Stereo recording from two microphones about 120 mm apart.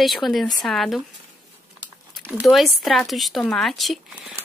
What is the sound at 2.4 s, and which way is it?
Speech, centre (ahead or behind).